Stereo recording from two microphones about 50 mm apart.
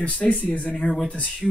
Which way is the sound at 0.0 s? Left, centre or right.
Left.